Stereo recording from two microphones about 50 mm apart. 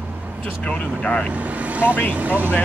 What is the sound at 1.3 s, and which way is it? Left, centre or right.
Speech, right.